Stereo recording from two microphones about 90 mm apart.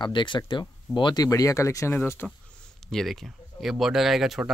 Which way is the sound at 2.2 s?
15° left (ahead or behind).